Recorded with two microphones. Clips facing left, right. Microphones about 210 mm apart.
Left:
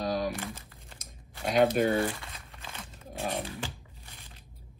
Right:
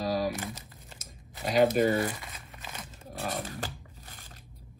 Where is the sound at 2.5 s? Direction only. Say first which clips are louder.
Right 2 dB; 15° right (ahead or behind).